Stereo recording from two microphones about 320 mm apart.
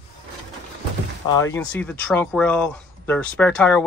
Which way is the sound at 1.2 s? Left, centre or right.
Centre.